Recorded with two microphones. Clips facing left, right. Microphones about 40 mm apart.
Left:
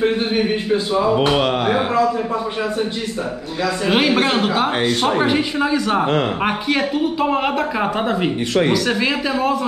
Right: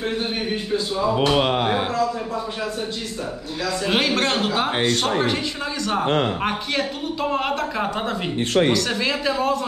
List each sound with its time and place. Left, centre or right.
0.0 s a man's voice: left
1.4 s speech: centre
3.9 s speech: centre
5.0 s speech: centre